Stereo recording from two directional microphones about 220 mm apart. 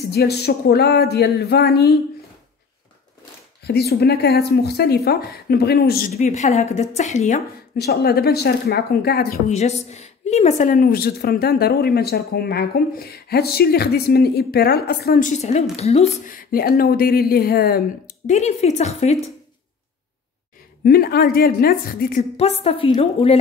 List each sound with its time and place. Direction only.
0.1 s a woman's voice: 45° left (ahead or behind)
3.6 s a woman's voice: 50° left (ahead or behind)
6.1 s speech: 30° left (ahead or behind)
9.5 s a woman's voice: 30° left (ahead or behind)
20.8 s a woman's voice: 45° left (ahead or behind)
22.4 s a woman's voice: 25° left (ahead or behind)